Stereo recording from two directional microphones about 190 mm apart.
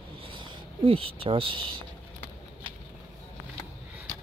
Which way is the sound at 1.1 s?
30° right (ahead or behind).